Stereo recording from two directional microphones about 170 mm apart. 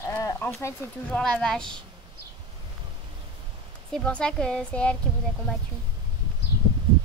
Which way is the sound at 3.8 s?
5° left (ahead or behind).